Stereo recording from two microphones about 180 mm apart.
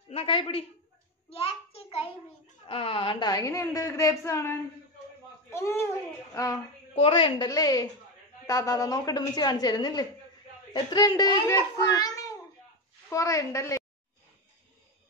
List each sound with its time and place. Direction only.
0.1 s a man's voice: 30° left (ahead or behind)
1.3 s a sound: 30° left (ahead or behind)
2.6 s a woman's voice: 30° left (ahead or behind)